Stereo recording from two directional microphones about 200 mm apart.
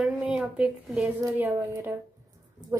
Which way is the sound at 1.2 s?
15° right (ahead or behind).